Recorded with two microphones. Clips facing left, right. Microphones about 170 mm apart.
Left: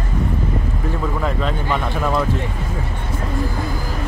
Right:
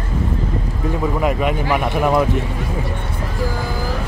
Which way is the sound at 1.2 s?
15° right (ahead or behind).